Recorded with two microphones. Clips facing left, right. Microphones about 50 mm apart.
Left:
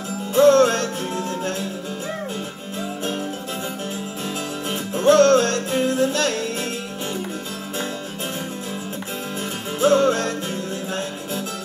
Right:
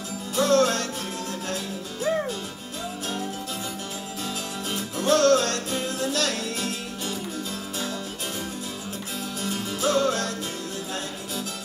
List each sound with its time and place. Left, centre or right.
0.3 s music: left
4.6 s music: left
9.4 s music: left